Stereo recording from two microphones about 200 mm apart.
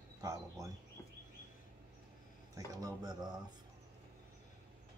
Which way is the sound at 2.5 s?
20° right (ahead or behind).